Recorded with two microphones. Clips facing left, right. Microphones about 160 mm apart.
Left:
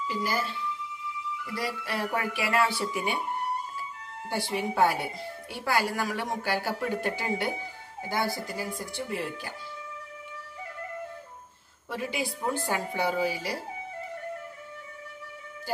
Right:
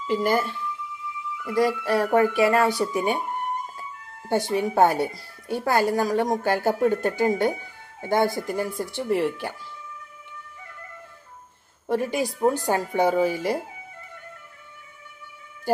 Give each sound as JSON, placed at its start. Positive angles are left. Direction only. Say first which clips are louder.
{"t": 0.0, "sound": "speech", "louder": "right 8 dB", "side_deg": -55}
{"t": 4.3, "sound": "speech", "louder": "right 7 dB", "side_deg": -45}
{"t": 11.9, "sound": "speech", "louder": "right 8 dB", "side_deg": -45}